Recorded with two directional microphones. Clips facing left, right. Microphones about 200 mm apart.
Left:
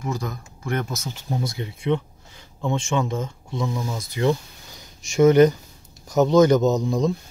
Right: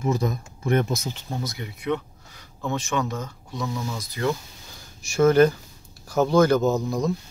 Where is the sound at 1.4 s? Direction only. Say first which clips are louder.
Left 3 dB; 25° left (ahead or behind).